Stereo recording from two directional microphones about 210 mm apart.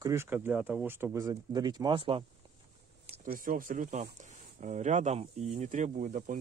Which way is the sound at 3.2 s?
40° right (ahead or behind).